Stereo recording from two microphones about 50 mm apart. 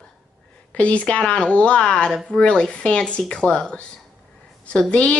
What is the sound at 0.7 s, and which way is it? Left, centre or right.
Speech, left.